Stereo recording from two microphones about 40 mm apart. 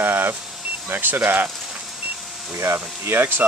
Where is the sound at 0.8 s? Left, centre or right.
Right.